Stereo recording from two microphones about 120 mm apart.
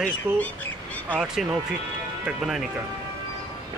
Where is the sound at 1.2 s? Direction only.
5° right (ahead or behind).